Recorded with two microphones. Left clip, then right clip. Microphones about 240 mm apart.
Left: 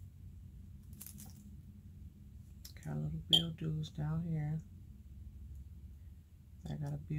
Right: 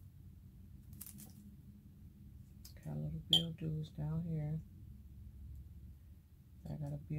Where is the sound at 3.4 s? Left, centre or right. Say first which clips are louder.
Left 2 dB; centre.